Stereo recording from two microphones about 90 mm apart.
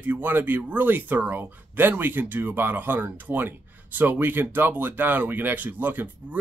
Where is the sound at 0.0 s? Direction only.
20° right (ahead or behind).